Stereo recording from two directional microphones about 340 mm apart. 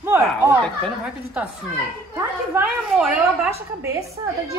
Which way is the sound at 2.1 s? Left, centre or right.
Centre.